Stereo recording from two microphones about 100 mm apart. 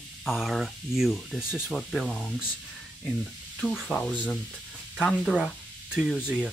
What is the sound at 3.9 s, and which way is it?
Speech, 10° left (ahead or behind).